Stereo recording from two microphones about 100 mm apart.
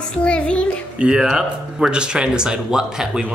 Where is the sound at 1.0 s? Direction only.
10° right (ahead or behind).